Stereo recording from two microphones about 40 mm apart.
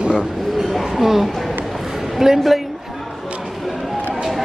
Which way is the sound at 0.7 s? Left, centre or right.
Centre.